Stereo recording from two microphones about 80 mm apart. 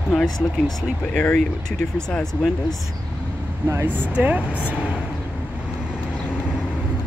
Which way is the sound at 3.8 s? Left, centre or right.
Right.